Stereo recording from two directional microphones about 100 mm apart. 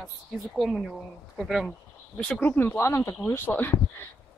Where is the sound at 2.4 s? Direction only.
20° left (ahead or behind).